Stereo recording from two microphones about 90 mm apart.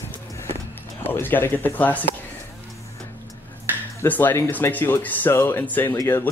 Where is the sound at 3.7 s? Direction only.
25° right (ahead or behind).